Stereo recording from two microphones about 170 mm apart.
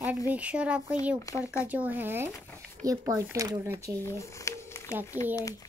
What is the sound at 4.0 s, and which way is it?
Speech, 15° left (ahead or behind).